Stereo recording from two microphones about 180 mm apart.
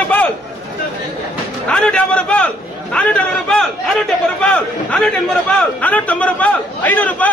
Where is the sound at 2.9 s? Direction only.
5° left (ahead or behind).